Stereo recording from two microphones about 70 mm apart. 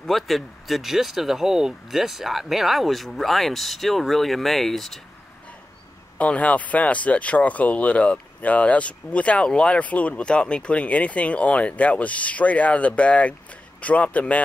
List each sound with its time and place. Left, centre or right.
0.0 s speech: centre
6.1 s speech: centre